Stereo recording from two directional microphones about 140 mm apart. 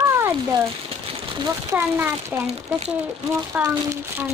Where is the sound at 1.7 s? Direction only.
15° right (ahead or behind).